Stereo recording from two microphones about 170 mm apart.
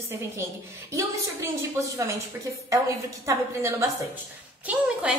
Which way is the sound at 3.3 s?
15° right (ahead or behind).